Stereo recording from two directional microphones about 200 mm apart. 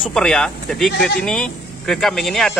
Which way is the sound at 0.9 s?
55° left (ahead or behind).